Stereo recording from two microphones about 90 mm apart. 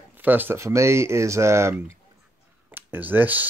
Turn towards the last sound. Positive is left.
turn(degrees=-20)  # may be behind; listen again after turning